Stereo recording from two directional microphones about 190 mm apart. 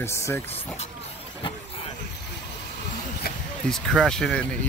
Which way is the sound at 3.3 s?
50° left (ahead or behind).